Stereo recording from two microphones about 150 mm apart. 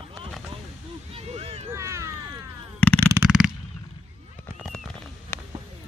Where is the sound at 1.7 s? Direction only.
20° right (ahead or behind).